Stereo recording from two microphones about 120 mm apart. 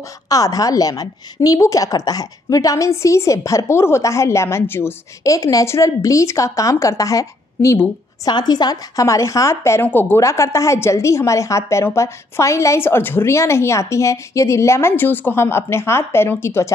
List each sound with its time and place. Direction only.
0.3 s a woman's voice: 30° left (ahead or behind)